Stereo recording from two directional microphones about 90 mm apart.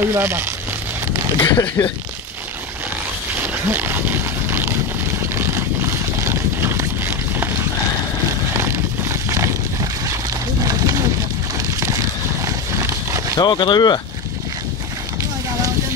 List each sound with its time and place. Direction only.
0.0 s speech: 25° right (ahead or behind)
1.4 s speech: 40° left (ahead or behind)
3.7 s a sound: 25° right (ahead or behind)
5.3 s vehicle: 30° right (ahead or behind)
6.2 s a sound: 30° right (ahead or behind)
10.6 s vehicle: 40° right (ahead or behind)
12.4 s horse: 35° right (ahead or behind)
13.4 s speech: 55° left (ahead or behind)